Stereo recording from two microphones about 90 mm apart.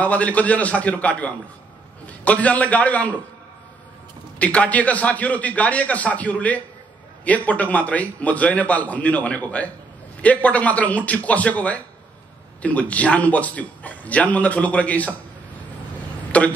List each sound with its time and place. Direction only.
0.0 s a man's voice: 15° left (ahead or behind)
4.4 s a man's voice: 15° left (ahead or behind)
16.3 s a sound: 15° left (ahead or behind)